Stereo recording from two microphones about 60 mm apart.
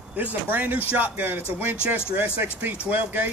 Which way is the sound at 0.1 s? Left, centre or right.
Right.